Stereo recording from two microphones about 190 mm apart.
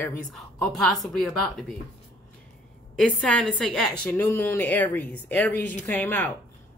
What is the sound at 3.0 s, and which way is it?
A woman's voice, 5° left (ahead or behind).